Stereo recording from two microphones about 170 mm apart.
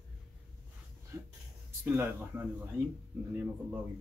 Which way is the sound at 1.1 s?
15° right (ahead or behind).